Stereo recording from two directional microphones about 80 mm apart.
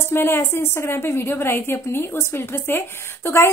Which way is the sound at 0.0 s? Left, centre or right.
Left.